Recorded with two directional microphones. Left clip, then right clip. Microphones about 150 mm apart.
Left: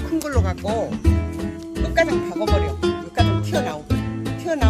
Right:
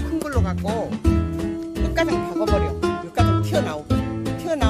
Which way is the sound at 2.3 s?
75° right (ahead or behind).